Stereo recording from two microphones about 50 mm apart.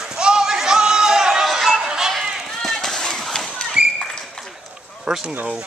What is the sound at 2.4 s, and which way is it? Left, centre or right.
Chop, centre.